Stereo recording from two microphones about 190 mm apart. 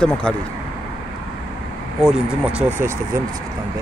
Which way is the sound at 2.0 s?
5° right (ahead or behind).